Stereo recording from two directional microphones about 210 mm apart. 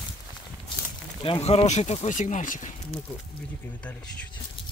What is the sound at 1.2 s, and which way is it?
Speech, 30° left (ahead or behind).